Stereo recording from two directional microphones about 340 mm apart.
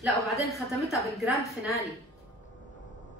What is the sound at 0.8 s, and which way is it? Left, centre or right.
A woman's voice, centre.